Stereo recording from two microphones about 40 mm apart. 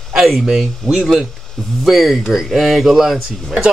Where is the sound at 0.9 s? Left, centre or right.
Centre.